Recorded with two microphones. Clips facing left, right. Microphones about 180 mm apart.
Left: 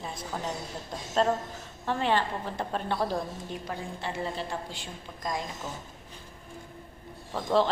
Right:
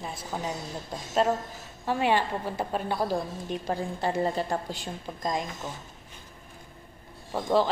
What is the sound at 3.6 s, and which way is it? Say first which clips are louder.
A woman's voice: right 8 dB; 40° right (ahead or behind).